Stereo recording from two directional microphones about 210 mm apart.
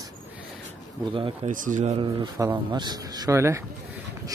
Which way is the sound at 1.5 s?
40° right (ahead or behind).